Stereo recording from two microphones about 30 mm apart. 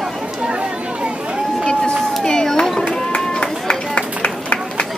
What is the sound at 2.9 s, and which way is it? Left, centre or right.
Run, left.